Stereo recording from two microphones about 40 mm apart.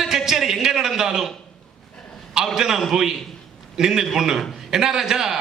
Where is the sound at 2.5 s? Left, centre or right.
Centre.